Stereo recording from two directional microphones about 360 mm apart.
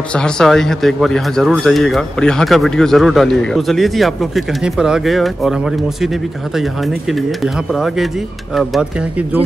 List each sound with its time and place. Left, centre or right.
0.1 s speech: centre